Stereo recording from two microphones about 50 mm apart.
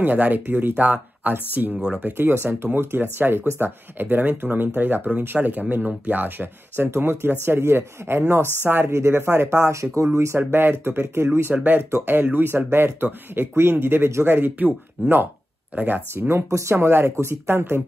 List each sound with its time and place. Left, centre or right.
0.0 s speech: right
0.7 s speech: right
8.8 s speech: right
10.1 s speech: right
10.5 s speech: right
11.5 s speech: right
11.9 s speech: right
16.1 s speech: right
16.4 s speech: right